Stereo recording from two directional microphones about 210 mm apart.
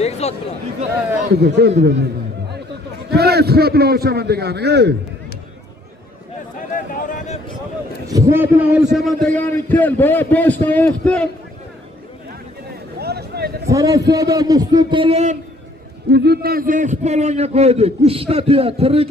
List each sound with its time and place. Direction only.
0.0 s speech: 30° left (ahead or behind)
1.3 s a man's voice: 50° right (ahead or behind)
3.1 s a man's voice: 50° right (ahead or behind)
6.7 s a sound: 40° left (ahead or behind)
8.1 s a man's voice: 15° right (ahead or behind)
8.9 s a man's voice: centre (ahead or behind)
13.0 s a sound: 50° right (ahead or behind)
13.7 s a man's voice: 15° right (ahead or behind)
16.1 s a man's voice: 50° right (ahead or behind); by 19.0 s 25° right (ahead or behind)